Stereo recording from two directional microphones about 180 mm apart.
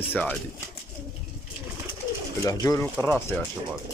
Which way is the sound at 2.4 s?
20° left (ahead or behind).